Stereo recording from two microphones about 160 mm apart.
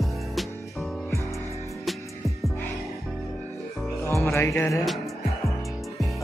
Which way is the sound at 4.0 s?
15° left (ahead or behind).